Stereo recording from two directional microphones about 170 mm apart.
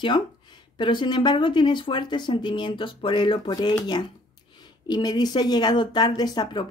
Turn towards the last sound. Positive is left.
turn(degrees=25)  # may be behind; listen again after turning